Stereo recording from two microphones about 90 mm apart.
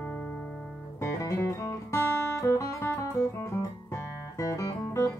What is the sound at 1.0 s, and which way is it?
Music, 35° left (ahead or behind).